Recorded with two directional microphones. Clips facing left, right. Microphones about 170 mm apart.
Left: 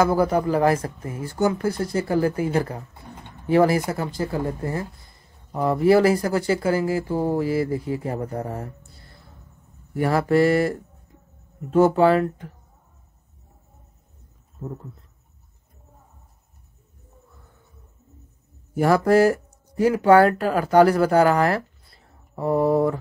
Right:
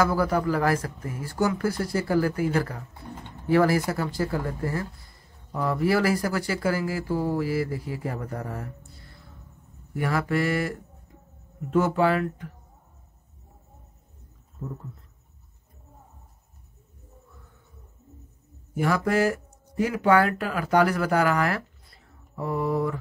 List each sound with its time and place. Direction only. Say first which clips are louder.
0.0 s speech: left 4 dB; 20° left (ahead or behind)
9.9 s speech: left 7 dB; 35° left (ahead or behind)
14.6 s speech: left 3 dB; 25° left (ahead or behind)
18.8 s speech: left 7 dB; 35° left (ahead or behind)